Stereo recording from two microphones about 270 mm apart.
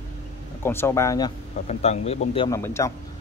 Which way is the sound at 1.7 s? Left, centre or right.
Left.